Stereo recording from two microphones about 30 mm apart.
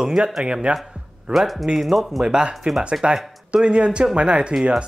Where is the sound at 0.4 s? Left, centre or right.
Right.